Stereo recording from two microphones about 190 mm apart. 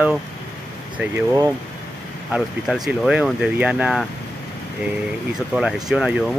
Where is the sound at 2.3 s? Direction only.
Centre (ahead or behind).